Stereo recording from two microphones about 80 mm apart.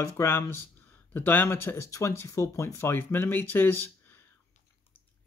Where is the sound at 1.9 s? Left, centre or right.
Left.